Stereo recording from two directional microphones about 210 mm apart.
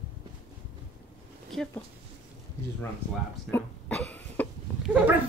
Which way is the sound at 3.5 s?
10° left (ahead or behind).